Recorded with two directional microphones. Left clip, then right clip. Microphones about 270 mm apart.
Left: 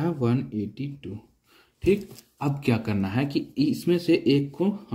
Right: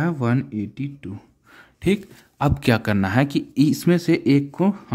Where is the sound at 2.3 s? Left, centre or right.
Right.